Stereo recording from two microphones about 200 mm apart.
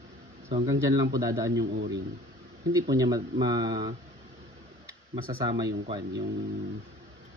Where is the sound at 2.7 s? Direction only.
15° right (ahead or behind).